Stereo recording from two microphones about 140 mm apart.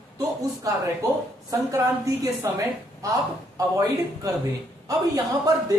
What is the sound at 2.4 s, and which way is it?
A man's voice, 20° right (ahead or behind).